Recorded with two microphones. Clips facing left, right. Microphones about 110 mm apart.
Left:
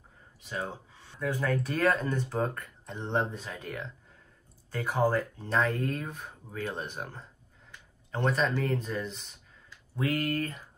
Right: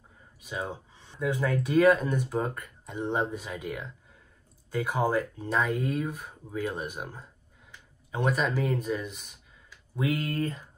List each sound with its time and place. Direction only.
0.5 s speech: 15° right (ahead or behind)
9.9 s speech: 20° right (ahead or behind)